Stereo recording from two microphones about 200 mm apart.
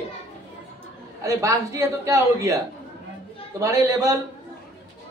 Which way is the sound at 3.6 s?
15° right (ahead or behind).